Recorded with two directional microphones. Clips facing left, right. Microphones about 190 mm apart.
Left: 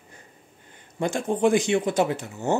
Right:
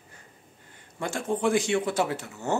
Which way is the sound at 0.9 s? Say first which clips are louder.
Left 4 dB; 20° left (ahead or behind).